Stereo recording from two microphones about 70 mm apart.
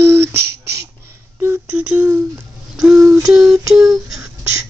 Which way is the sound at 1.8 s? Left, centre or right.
Right.